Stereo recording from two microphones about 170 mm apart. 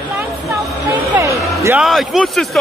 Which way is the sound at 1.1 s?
15° right (ahead or behind).